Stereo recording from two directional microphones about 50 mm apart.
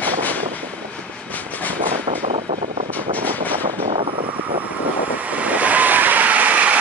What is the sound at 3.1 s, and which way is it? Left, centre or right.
Vehicle, left.